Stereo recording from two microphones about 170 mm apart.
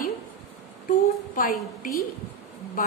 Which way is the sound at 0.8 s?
55° left (ahead or behind).